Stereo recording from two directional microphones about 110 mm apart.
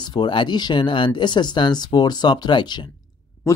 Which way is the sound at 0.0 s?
40° left (ahead or behind).